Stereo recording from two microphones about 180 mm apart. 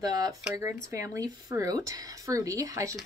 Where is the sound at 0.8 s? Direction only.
15° right (ahead or behind).